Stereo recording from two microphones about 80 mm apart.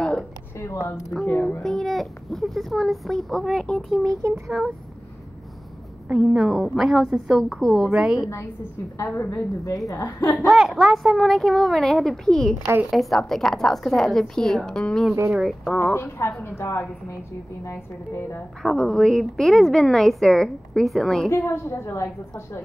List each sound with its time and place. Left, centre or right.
1.2 s speech: centre
1.6 s a woman's voice: centre
6.0 s a woman's voice: centre
7.9 s a woman's voice: centre
8.9 s a woman's voice: left
10.4 s a woman's voice: centre
15.9 s a woman's voice: left
18.6 s a woman's voice: centre
21.3 s a woman's voice: left